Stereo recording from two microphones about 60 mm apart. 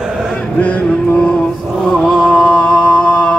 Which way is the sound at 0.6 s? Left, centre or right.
Left.